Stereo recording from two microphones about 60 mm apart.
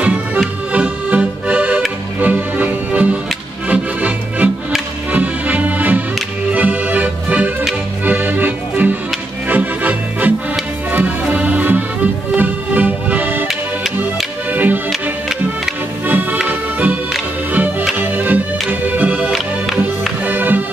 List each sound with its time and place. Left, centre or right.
0.0 s music: right
0.7 s accordion: right
2.1 s music: right
6.5 s accordion: right
10.9 s music: right
14.5 s music: right
14.9 s music: centre
16.1 s accordion: right
17.5 s music: right
19.3 s music: centre
20.2 s music: right